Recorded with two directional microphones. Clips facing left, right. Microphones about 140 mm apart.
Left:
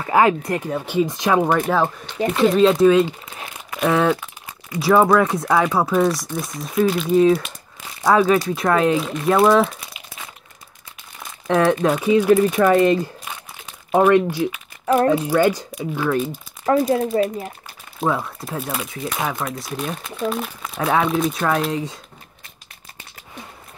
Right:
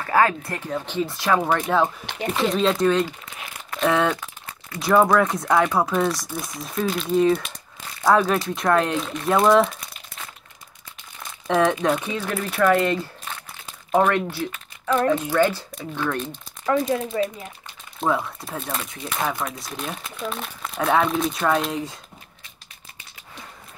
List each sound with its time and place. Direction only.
0.0 s speech: 15° left (ahead or behind)
1.7 s speech: centre (ahead or behind)
11.4 s speech: centre (ahead or behind)
16.8 s speech: 35° left (ahead or behind)
17.9 s speech: centre (ahead or behind)